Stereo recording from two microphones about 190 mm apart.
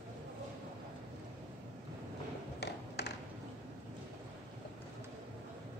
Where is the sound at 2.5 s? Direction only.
60° left (ahead or behind).